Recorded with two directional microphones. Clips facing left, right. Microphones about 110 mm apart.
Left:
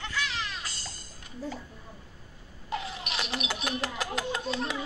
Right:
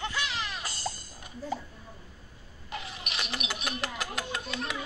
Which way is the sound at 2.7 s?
30° left (ahead or behind).